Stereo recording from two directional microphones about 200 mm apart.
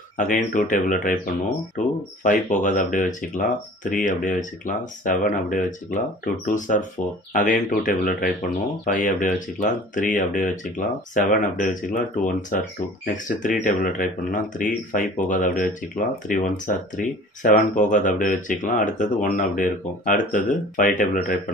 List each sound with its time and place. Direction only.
0.2 s speech: 40° left (ahead or behind)